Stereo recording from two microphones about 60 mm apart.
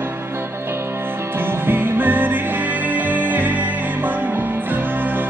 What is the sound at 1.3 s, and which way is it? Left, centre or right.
Music, right.